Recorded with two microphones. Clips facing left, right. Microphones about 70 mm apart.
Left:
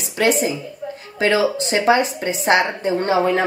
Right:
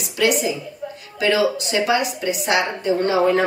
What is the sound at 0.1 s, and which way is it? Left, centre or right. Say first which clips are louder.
A woman's voice: left 1 dB; left.